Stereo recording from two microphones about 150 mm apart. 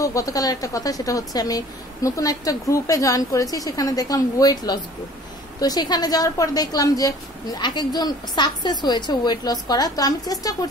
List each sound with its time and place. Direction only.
0.0 s a woman's voice: 20° left (ahead or behind)